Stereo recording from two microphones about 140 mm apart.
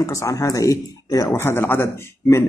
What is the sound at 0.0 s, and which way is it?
Speech, 20° left (ahead or behind).